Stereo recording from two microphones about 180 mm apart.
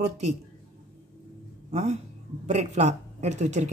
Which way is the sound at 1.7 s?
40° right (ahead or behind).